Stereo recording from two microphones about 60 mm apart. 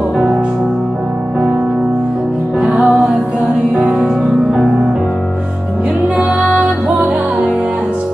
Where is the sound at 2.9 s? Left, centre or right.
Centre.